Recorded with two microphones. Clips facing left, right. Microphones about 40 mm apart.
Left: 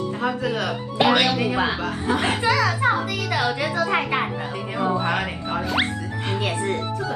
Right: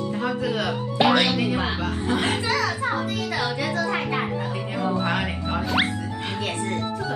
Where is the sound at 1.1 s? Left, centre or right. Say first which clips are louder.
Left 1 dB; left.